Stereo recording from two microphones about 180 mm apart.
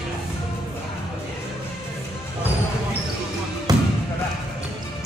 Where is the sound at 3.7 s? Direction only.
20° right (ahead or behind).